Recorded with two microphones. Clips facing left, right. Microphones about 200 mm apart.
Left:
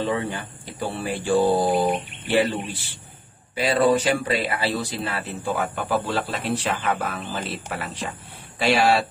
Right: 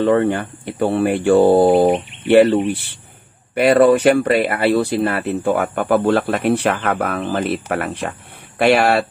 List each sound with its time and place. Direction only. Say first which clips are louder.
0.0 s speech: right 10 dB; 60° right (ahead or behind)